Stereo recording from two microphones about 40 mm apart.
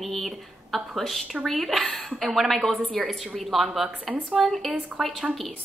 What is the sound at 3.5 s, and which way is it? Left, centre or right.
A woman's voice, centre.